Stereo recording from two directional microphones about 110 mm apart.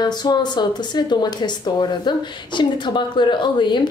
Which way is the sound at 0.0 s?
40° left (ahead or behind).